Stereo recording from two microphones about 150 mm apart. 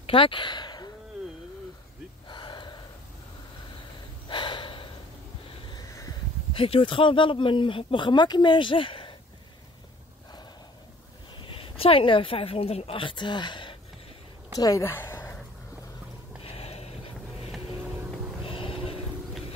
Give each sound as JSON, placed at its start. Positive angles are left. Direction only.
{"t": 0.0, "sound": "speech", "side_deg": 35}
{"t": 2.2, "sound": "gasp", "side_deg": 30}
{"t": 4.3, "sound": "gasp", "side_deg": 35}
{"t": 5.7, "sound": "a sound", "side_deg": 25}
{"t": 6.5, "sound": "speech", "side_deg": 35}
{"t": 11.4, "sound": "speech", "side_deg": 35}
{"t": 14.6, "sound": "speech", "side_deg": 20}
{"t": 16.4, "sound": "a sound", "side_deg": 40}